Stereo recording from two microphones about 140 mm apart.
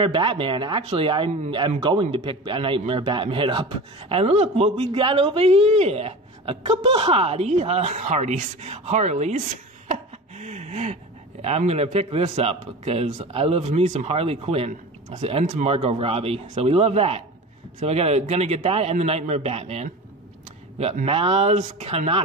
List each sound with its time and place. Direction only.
0.0 s speech: 35° right (ahead or behind); by 9.4 s 55° right (ahead or behind)
9.8 s a sound: 55° right (ahead or behind)
11.4 s speech: 50° right (ahead or behind)
14.7 s speech: 55° right (ahead or behind)